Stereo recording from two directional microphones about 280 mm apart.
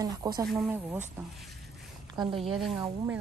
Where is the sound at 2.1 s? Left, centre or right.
Centre.